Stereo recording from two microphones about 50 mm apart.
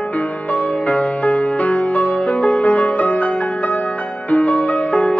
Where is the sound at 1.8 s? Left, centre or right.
Left.